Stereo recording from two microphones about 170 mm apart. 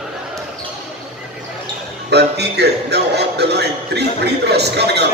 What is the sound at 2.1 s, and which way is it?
Music, 80° right.